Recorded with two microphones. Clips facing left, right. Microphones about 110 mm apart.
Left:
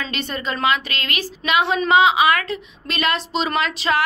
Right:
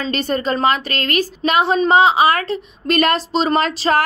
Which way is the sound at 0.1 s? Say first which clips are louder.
Right 7 dB; 40° right (ahead or behind).